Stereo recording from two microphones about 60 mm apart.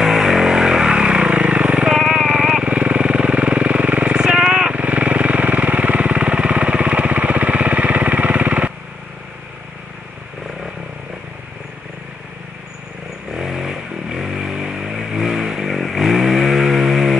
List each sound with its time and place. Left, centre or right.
0.0 s vehicle: centre
13.3 s vehicle: centre